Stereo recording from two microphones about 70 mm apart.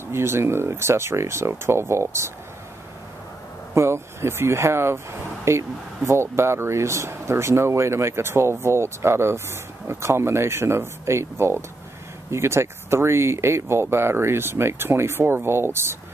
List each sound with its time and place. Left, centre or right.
0.1 s speech: right
3.7 s speech: right